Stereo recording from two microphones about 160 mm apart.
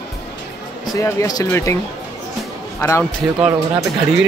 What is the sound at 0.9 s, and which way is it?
Speech, 20° left (ahead or behind).